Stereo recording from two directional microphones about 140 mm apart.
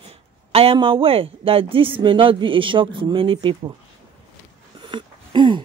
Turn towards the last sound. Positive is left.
turn(degrees=-35)  # may be behind; listen again after turning